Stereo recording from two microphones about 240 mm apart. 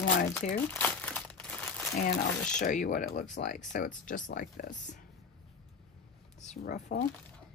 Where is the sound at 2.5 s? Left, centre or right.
Left.